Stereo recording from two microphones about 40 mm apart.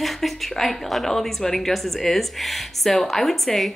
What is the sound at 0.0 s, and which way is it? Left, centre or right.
A woman's voice, centre.